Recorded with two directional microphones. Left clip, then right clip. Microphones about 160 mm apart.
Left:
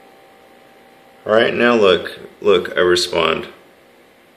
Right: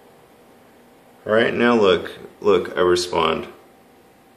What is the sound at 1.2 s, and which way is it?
Speech, 5° left (ahead or behind).